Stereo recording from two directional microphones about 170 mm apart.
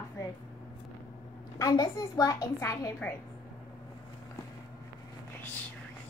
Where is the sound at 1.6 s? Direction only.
20° left (ahead or behind).